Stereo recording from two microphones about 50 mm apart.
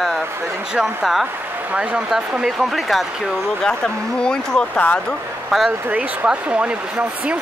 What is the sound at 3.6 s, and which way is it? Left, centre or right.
Speech, centre.